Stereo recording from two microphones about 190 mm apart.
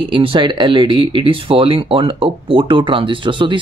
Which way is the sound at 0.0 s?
25° right (ahead or behind).